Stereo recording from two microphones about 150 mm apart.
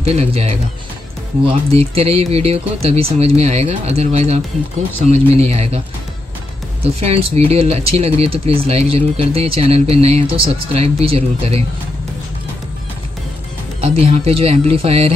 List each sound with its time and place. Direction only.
0.0 s speech: 45° right (ahead or behind)
6.8 s speech: 40° right (ahead or behind)
13.7 s speech: 40° right (ahead or behind)